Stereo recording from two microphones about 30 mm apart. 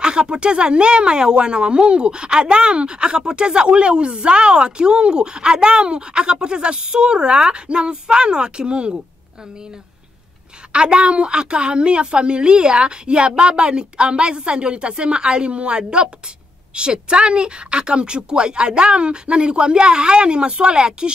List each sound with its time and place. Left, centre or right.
0.0 s speech: right
10.7 s speech: right